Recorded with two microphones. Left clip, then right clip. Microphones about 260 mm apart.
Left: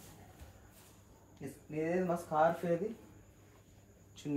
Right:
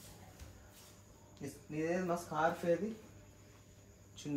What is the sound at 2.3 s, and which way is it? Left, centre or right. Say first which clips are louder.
Speech: left 6 dB; left.